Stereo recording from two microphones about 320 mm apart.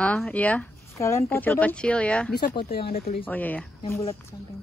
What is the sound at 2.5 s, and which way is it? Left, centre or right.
Speech, left.